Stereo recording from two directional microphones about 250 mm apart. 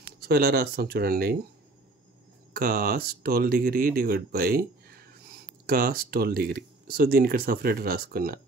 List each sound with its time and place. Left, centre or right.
0.2 s speech: right
2.5 s speech: right